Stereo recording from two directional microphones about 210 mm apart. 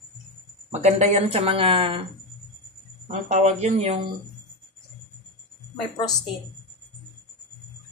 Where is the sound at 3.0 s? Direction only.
35° right (ahead or behind).